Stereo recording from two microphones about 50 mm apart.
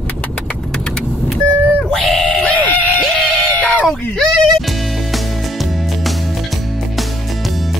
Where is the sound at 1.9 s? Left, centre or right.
Centre.